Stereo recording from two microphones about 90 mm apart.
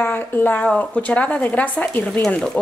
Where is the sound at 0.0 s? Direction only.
20° left (ahead or behind).